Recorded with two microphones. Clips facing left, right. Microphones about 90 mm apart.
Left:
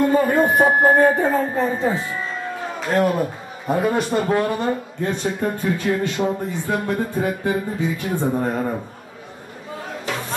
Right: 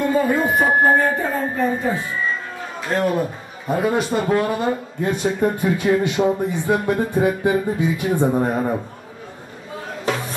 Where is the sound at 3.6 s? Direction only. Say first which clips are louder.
Even; centre (ahead or behind).